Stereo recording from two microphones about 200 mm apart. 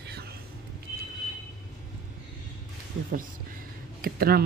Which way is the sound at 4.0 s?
50° right (ahead or behind).